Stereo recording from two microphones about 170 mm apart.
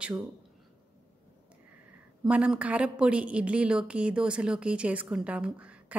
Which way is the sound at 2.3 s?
5° right (ahead or behind).